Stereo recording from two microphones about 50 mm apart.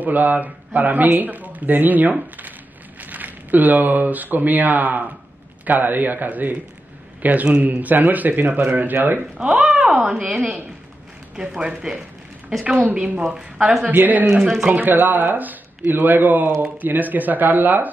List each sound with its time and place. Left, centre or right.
0.0 s a man's voice: right
9.4 s a woman's voice: centre
12.8 s a woman's voice: right; by 13.8 s centre
13.8 s speech: right